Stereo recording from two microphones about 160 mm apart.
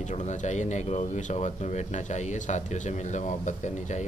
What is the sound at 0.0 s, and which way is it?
Speech, 50° left (ahead or behind).